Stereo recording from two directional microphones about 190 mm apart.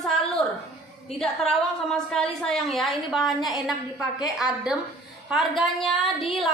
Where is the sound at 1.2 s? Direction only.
5° left (ahead or behind).